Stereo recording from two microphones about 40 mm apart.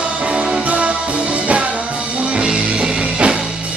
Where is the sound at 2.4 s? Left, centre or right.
Right.